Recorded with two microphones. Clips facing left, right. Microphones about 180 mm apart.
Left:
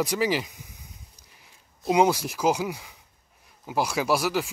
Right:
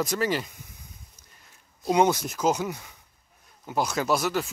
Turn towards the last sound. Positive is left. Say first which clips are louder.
# left 1 dB
turn(degrees=10)  # may be behind; listen again after turning